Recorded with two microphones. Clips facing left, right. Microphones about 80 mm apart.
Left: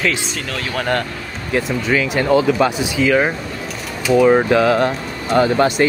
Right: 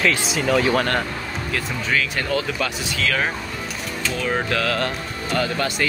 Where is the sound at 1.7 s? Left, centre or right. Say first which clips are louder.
Left 4 dB; centre.